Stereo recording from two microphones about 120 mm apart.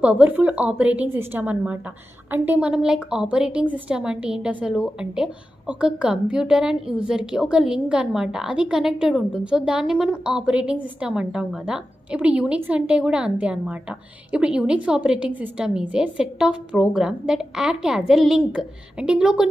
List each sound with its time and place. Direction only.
0.0 s a woman's voice: 10° right (ahead or behind)